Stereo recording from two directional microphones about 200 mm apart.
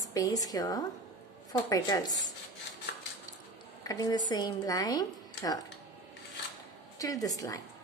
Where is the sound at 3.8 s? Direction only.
20° left (ahead or behind).